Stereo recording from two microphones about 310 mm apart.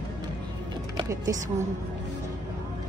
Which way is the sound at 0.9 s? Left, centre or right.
Centre.